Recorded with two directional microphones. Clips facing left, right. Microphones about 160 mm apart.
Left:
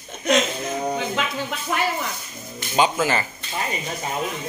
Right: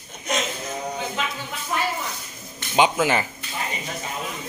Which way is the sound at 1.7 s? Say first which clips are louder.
Left 2 dB; 75° left (ahead or behind).